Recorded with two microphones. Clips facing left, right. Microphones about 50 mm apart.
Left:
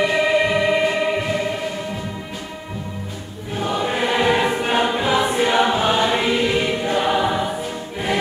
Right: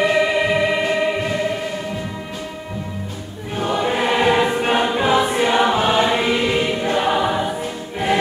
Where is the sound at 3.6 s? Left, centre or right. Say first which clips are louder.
Right 2 dB; centre.